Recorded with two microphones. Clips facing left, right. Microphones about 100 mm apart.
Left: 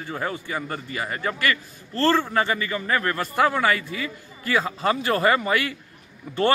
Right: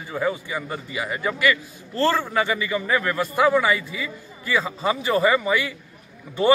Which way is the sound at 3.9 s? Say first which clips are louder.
Left 1 dB; 55° left (ahead or behind).